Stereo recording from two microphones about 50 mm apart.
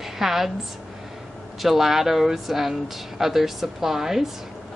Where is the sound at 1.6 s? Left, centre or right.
Centre.